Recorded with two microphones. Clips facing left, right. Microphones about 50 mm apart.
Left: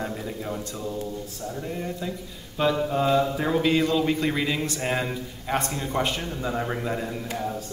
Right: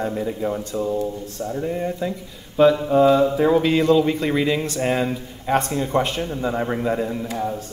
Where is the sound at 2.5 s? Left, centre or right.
Centre.